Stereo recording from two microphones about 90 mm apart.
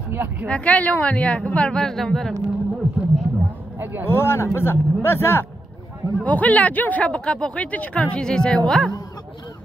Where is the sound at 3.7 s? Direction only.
20° right (ahead or behind).